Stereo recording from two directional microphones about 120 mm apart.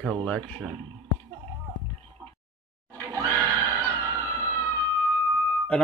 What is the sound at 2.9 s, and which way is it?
Neigh, 25° right (ahead or behind).